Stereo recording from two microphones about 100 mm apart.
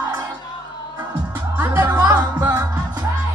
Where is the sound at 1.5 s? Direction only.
20° right (ahead or behind).